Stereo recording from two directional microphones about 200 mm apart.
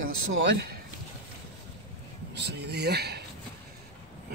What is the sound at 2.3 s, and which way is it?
Speech, 60° right (ahead or behind).